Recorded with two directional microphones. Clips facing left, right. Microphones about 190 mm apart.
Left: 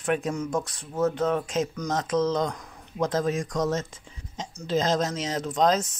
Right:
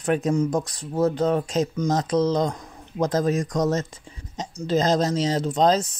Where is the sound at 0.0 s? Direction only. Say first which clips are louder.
Right 5 dB; 35° right (ahead or behind).